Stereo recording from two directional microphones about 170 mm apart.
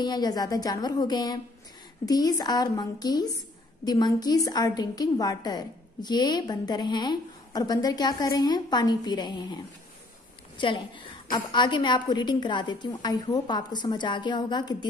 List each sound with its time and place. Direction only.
0.0 s a woman's voice: 25° left (ahead or behind)
10.6 s a woman's voice: 30° left (ahead or behind)